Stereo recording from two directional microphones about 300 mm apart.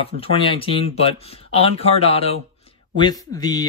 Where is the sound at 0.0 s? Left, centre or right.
Centre.